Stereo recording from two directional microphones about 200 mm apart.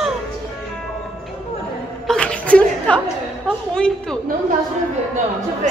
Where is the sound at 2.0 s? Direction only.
5° left (ahead or behind).